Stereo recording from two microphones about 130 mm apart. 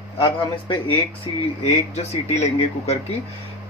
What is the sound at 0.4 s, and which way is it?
Speech, 40° left (ahead or behind).